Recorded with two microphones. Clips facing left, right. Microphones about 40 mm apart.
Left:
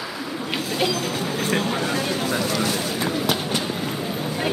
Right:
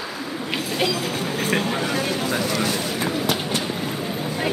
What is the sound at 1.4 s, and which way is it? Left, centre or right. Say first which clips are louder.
Vehicle: right 1 dB; centre.